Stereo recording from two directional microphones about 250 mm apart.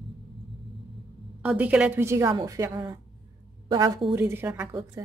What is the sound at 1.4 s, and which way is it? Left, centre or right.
A woman's voice, centre.